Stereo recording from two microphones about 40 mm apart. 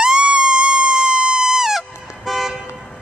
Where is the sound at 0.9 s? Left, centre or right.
Centre.